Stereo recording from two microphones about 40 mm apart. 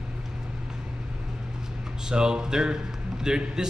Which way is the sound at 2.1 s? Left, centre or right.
Centre.